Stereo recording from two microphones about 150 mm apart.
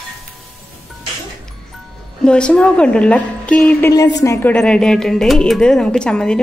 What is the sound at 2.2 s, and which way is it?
A woman's voice, 5° left (ahead or behind).